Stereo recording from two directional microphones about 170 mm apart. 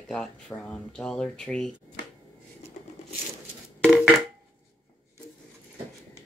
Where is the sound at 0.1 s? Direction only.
5° left (ahead or behind).